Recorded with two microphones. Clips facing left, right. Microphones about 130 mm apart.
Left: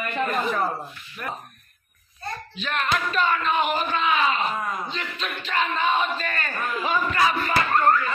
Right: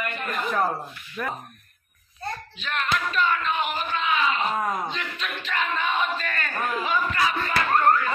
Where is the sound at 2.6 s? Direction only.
50° left (ahead or behind).